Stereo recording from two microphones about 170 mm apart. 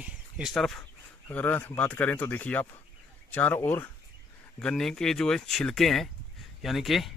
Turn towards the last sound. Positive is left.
turn(degrees=0)  # may be behind; listen again after turning